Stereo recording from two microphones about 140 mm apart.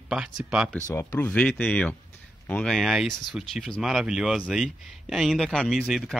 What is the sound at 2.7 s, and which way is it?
Speech, centre (ahead or behind).